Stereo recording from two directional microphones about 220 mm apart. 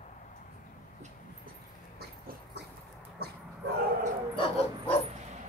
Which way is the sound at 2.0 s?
45° right (ahead or behind).